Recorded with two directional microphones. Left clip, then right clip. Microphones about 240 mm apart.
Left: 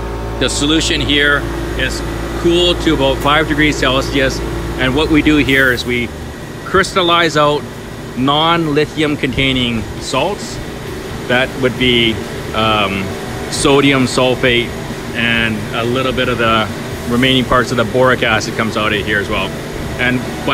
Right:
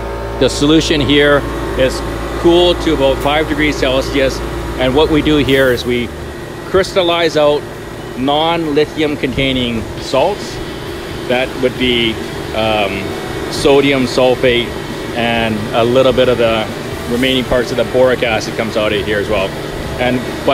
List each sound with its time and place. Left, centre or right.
0.4 s speech: centre
2.5 s speech: centre
8.5 s speech: centre
16.3 s speech: centre